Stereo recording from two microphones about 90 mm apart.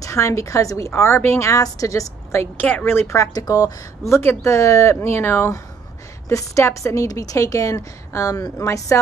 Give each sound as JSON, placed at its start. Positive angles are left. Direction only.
{"t": 0.0, "sound": "a woman's voice", "side_deg": 35}
{"t": 2.5, "sound": "speech", "side_deg": 20}
{"t": 3.3, "sound": "speech", "side_deg": 45}
{"t": 4.1, "sound": "a woman's voice", "side_deg": 30}